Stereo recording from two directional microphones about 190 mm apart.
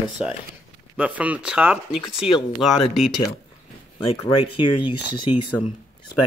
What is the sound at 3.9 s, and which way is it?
Speech, 30° left (ahead or behind).